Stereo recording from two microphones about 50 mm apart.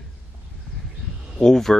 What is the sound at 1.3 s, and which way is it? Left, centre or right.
Speech, centre.